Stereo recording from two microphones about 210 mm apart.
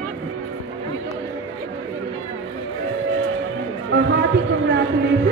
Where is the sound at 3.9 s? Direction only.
60° right (ahead or behind).